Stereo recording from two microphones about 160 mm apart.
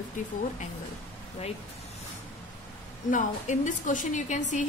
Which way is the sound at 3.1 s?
50° left (ahead or behind).